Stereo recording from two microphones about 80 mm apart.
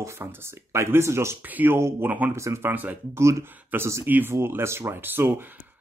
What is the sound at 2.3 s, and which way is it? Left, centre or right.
Speech, right.